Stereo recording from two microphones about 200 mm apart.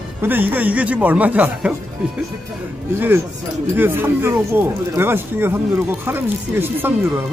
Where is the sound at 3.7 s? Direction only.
10° right (ahead or behind).